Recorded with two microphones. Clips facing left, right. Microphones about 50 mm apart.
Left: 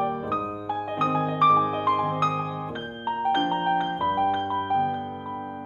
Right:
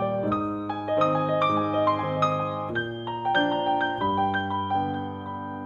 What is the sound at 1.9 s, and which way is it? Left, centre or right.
Music, right.